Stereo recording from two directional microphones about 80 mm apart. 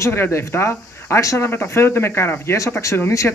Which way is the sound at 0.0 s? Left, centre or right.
Left.